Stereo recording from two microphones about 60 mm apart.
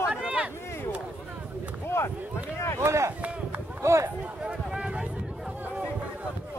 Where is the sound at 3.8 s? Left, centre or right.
Right.